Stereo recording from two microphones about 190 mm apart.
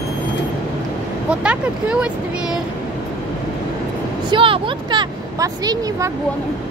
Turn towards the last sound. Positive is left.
turn(degrees=-20)  # may be behind; listen again after turning